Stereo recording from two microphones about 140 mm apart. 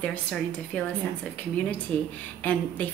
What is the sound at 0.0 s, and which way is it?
Speech, 10° left (ahead or behind).